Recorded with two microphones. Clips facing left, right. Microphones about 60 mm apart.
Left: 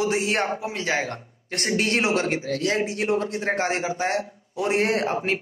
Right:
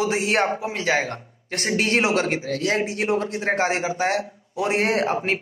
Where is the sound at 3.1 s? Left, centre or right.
Right.